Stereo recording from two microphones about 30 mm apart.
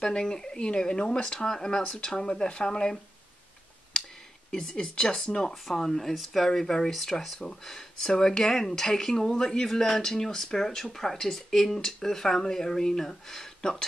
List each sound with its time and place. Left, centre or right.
0.0 s speech: left
4.5 s speech: centre; by 5.4 s left
5.8 s speech: centre
13.6 s speech: left